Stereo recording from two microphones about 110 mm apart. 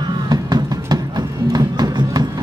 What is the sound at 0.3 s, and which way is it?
Music, 35° right (ahead or behind).